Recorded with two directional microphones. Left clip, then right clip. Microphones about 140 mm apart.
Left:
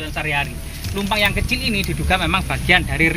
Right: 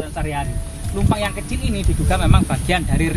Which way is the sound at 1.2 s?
25° right (ahead or behind).